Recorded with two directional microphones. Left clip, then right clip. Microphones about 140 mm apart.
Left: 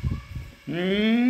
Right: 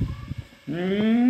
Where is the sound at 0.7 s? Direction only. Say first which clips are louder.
Even; 5° right (ahead or behind).